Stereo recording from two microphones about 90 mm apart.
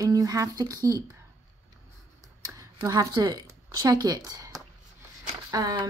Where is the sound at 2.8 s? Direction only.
50° right (ahead or behind).